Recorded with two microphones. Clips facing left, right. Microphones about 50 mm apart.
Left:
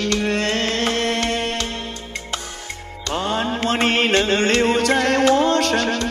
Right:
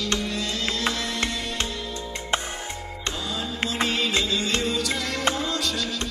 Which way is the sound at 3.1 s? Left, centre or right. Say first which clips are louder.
Left 10 dB; left.